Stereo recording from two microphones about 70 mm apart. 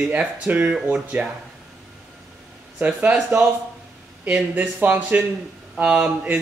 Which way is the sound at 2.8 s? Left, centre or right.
Centre.